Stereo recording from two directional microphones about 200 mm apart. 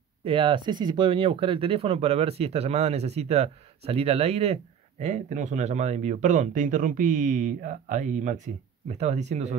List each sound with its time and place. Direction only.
0.2 s speech: 25° right (ahead or behind)